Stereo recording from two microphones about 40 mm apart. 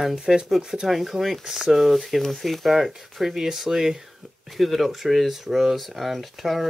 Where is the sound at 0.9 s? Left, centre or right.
Centre.